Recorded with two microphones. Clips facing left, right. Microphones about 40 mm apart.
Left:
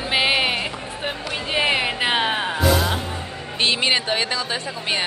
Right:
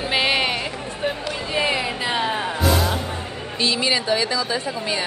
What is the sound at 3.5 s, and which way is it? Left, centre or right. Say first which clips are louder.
A woman's voice: left 1 dB; left.